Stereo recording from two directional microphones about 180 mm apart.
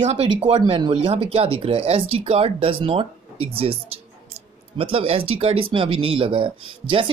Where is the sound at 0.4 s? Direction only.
30° right (ahead or behind).